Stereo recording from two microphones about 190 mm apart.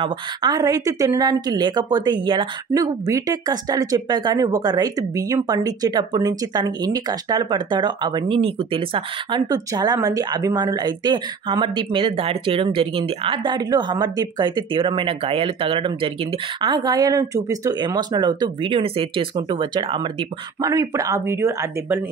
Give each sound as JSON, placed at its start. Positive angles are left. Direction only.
{"t": 0.0, "sound": "speech", "side_deg": -20}